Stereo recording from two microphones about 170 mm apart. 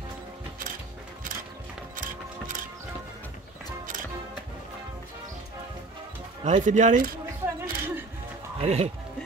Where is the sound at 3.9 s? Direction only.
50° right (ahead or behind).